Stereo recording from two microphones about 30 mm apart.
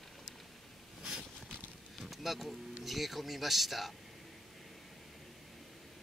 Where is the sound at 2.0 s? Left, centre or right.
Centre.